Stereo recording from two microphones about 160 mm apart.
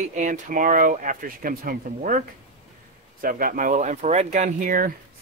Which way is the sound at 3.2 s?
65° right (ahead or behind).